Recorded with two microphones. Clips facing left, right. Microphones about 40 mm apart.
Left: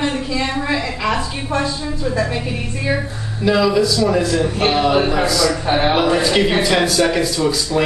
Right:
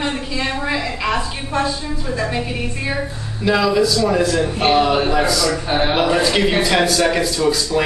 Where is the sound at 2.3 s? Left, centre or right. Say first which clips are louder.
Even; centre.